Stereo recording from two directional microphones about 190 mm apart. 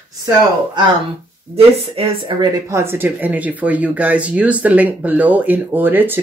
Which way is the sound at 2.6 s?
15° right (ahead or behind).